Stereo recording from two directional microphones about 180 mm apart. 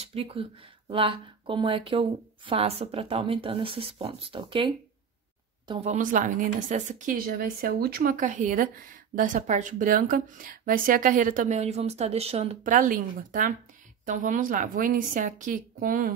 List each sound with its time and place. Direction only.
0.0 s speech: 35° right (ahead or behind)
5.9 s speech: 45° right (ahead or behind)